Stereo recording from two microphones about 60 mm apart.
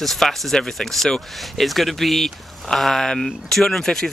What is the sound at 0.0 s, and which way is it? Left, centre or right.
Speech, centre.